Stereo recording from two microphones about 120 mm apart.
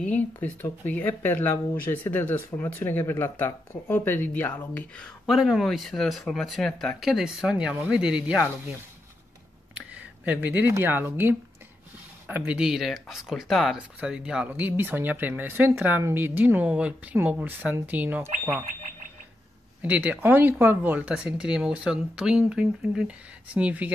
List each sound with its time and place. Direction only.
0.0 s speech: 15° left (ahead or behind); by 8.4 s 5° right (ahead or behind)
9.8 s a sound: 10° right (ahead or behind)
10.7 s speech: 20° right (ahead or behind)
19.8 s speech: 15° right (ahead or behind)